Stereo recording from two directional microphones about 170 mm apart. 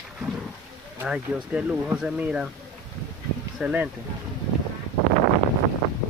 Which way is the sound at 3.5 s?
5° right (ahead or behind).